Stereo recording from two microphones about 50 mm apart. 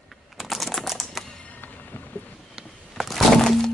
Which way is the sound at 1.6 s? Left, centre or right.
Left.